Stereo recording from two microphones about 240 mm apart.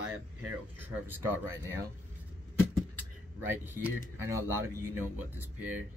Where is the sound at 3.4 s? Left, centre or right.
Centre.